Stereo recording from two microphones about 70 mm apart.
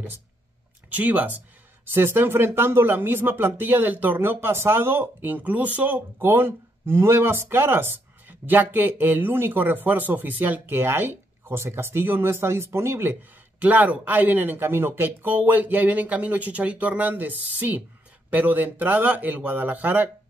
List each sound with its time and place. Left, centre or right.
0.8 s speech: right